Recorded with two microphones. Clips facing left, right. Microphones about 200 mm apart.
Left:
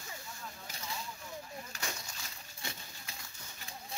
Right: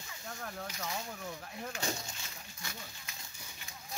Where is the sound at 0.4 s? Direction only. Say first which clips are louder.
Right 6 dB; 65° right (ahead or behind).